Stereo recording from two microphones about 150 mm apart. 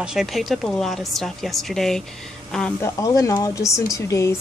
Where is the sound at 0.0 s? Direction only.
5° right (ahead or behind).